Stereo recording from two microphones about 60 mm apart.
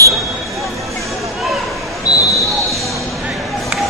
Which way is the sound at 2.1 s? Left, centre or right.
Left.